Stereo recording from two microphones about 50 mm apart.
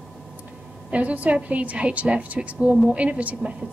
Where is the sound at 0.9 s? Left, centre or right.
Right.